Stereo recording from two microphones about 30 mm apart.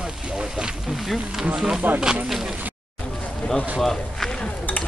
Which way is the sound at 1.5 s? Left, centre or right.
Centre.